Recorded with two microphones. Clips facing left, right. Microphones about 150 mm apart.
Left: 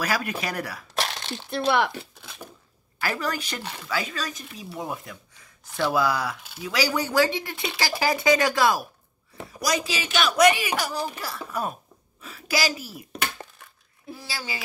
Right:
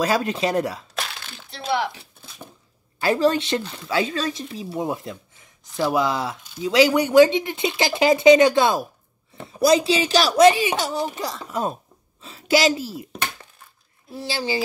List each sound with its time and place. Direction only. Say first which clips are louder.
0.0 s speech: right 6 dB; 25° right (ahead or behind)
1.5 s speech: left 2 dB; 55° left (ahead or behind)
3.0 s a woman's voice: right 10 dB; 25° right (ahead or behind)
14.2 s speech: right 11 dB; 30° right (ahead or behind)